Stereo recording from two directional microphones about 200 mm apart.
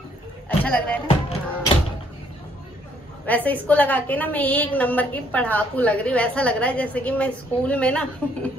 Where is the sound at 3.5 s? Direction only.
10° left (ahead or behind).